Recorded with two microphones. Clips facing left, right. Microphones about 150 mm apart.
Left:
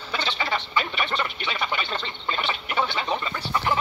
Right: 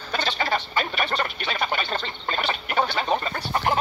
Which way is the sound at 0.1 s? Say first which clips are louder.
Right 2 dB; 45° right (ahead or behind).